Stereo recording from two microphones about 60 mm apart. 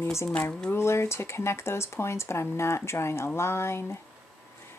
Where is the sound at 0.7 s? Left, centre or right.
Left.